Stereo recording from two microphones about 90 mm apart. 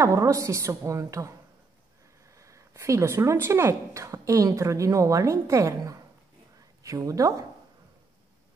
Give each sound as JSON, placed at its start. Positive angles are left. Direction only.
{"t": 0.0, "sound": "speech", "side_deg": -35}
{"t": 2.3, "sound": "speech", "side_deg": -35}